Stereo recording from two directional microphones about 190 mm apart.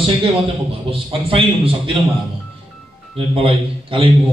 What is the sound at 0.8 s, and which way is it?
A man's voice, 30° right (ahead or behind).